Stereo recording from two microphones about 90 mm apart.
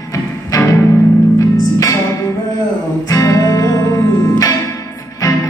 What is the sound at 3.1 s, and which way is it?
Music, 40° left (ahead or behind).